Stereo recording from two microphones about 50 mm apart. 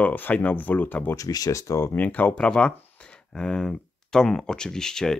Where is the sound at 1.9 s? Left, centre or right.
Left.